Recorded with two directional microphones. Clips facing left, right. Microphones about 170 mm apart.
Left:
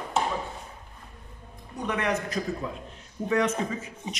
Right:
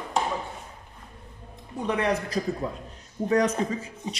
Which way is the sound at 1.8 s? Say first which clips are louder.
Right 2 dB; 30° right (ahead or behind).